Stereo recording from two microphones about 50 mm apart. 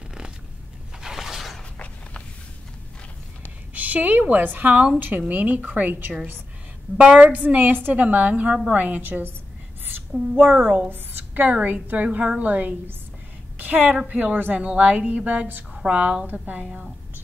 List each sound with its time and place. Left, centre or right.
1.0 s a sound: centre
3.7 s a woman's voice: right
7.0 s a woman's voice: right
10.3 s a woman's voice: right